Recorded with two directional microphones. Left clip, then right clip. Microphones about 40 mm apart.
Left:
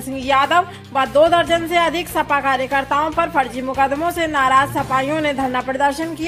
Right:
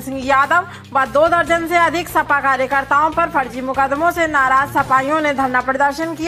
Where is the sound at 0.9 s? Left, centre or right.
Centre.